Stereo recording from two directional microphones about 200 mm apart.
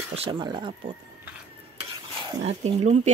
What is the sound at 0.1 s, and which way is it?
Speech, 30° right (ahead or behind).